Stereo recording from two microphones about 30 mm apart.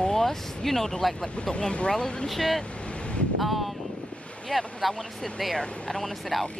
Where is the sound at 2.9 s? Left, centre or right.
Left.